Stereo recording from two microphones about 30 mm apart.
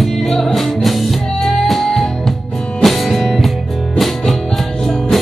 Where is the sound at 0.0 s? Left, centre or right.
Centre.